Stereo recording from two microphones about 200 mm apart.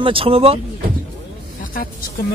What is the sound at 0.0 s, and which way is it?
Speech, 25° right (ahead or behind).